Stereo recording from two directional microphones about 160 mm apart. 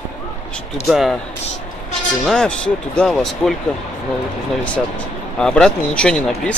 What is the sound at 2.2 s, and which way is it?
Speech, 5° left (ahead or behind).